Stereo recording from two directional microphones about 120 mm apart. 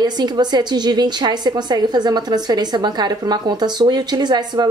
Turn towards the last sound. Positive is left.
turn(degrees=-35)  # may be behind; listen again after turning